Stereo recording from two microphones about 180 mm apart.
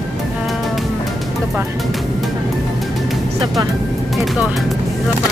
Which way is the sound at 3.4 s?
20° right (ahead or behind).